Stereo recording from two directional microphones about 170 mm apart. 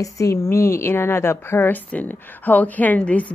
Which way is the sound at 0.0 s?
15° left (ahead or behind).